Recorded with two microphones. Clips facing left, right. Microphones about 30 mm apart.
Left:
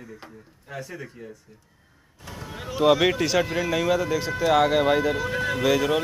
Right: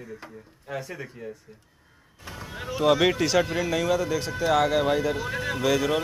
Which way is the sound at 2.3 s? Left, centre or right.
Centre.